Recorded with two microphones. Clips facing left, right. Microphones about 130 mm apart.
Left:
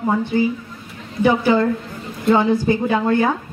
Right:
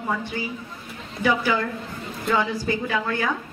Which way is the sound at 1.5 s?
35° left (ahead or behind).